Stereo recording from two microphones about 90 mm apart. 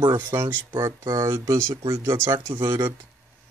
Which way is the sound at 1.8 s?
60° right (ahead or behind).